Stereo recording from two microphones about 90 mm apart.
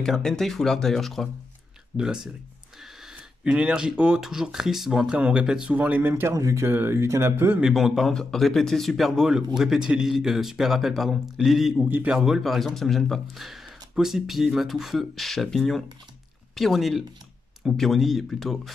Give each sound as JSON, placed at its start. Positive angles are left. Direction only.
{"t": 0.0, "sound": "a man's voice", "side_deg": 5}
{"t": 2.0, "sound": "speech", "side_deg": -10}
{"t": 7.6, "sound": "a man's voice", "side_deg": 0}